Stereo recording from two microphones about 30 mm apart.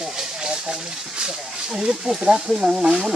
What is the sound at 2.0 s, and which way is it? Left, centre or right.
Speech, centre.